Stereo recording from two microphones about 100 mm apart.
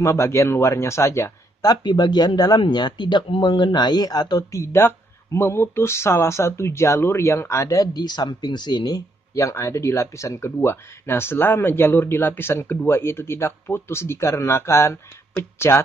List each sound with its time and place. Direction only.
0.0 s speech: 30° left (ahead or behind)
1.7 s speech: 45° left (ahead or behind); by 15.8 s 25° left (ahead or behind)